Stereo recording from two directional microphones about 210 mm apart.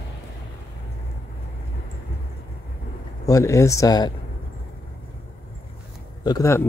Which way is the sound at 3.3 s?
15° left (ahead or behind).